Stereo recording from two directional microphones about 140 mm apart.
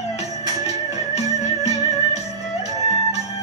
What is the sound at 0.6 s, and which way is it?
Music, 50° left (ahead or behind).